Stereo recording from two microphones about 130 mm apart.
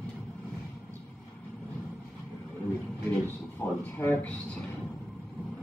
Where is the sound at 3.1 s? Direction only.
15° left (ahead or behind).